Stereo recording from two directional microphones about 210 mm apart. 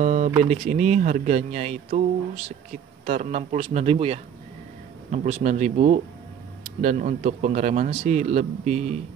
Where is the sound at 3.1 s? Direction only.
35° right (ahead or behind).